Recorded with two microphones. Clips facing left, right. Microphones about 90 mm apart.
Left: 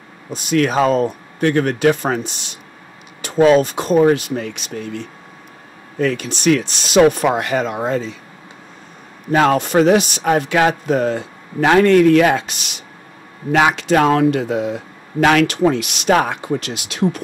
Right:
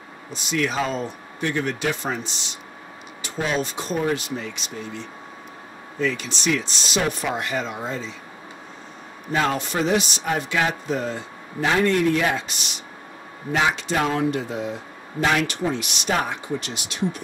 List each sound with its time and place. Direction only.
0.3 s speech: 55° left (ahead or behind)
9.3 s a man's voice: 60° left (ahead or behind); by 17.2 s 85° left